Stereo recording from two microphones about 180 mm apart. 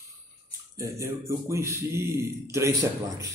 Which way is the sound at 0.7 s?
15° right (ahead or behind).